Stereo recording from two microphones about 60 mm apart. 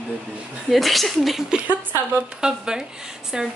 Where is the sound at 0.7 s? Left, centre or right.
Centre.